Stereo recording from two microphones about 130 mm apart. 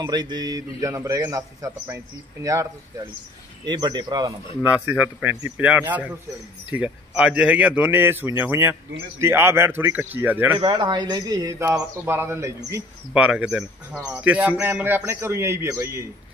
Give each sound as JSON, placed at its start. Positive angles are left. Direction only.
{"t": 0.0, "sound": "speech", "side_deg": -35}
{"t": 4.6, "sound": "speech", "side_deg": -10}
{"t": 10.6, "sound": "speech", "side_deg": -35}
{"t": 13.1, "sound": "speech", "side_deg": -10}